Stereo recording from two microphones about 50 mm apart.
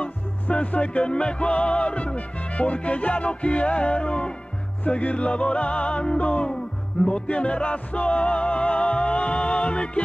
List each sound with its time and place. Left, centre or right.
0.0 s music: left